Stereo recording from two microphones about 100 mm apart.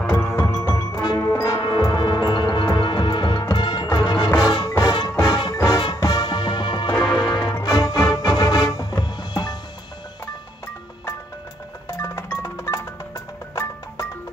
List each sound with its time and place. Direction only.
0.0 s music: 10° left (ahead or behind)
0.4 s music: 25° left (ahead or behind)
1.3 s brass instrument: 35° left (ahead or behind)
1.6 s music: 40° left (ahead or behind)
6.9 s music: 10° left (ahead or behind)
7.6 s music: 40° left (ahead or behind)
12.4 s music: 25° left (ahead or behind)